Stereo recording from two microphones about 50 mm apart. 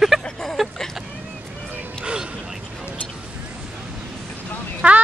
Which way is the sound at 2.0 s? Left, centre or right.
Centre.